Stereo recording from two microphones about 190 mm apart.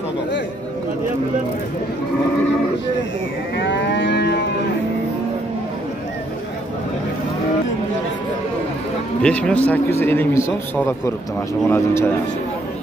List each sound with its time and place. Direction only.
3.5 s music: 70° left (ahead or behind)
9.2 s a man's voice: 5° left (ahead or behind)